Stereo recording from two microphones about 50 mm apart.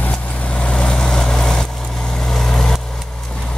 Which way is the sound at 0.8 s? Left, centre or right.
Centre.